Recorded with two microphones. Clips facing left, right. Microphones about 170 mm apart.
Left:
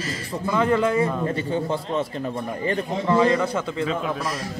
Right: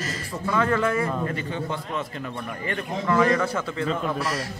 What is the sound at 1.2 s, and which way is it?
Speech, 30° left (ahead or behind).